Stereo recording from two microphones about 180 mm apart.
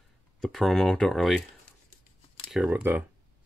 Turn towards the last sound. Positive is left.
turn(degrees=-10)  # may be behind; listen again after turning